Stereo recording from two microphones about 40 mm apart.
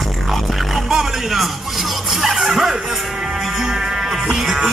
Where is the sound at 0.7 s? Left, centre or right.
Centre.